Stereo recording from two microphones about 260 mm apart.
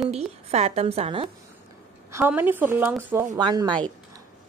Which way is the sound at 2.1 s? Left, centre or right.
Centre.